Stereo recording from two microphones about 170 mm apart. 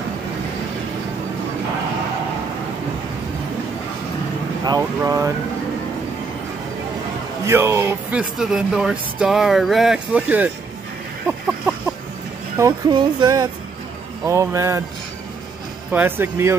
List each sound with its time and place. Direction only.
4.6 s speech: 20° right (ahead or behind)
7.4 s speech: 15° right (ahead or behind)
11.2 s a sound: 5° right (ahead or behind)
12.5 s speech: 20° right (ahead or behind)
15.9 s speech: 10° right (ahead or behind)